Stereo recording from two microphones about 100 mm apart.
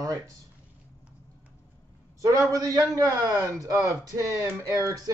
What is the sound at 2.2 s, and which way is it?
A man's voice, 35° right (ahead or behind).